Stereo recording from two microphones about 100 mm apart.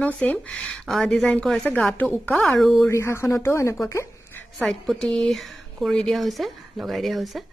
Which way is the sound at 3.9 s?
25° left (ahead or behind).